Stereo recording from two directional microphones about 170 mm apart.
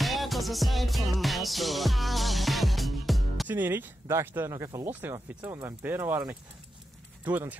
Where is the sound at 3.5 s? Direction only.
10° right (ahead or behind).